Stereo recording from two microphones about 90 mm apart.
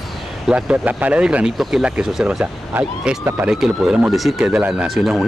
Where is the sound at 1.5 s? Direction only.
5° right (ahead or behind); by 3.5 s 20° right (ahead or behind).